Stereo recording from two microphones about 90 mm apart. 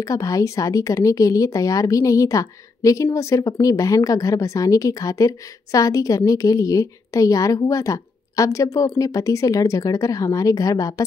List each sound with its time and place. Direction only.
0.0 s speech: 40° left (ahead or behind)